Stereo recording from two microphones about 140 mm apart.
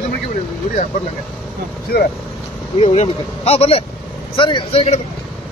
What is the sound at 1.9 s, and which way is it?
Speech, 90° left.